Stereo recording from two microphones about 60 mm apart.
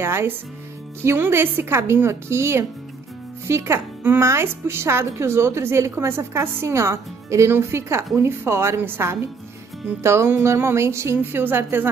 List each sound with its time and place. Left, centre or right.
0.0 s a woman's voice: right
11.4 s a woman's voice: right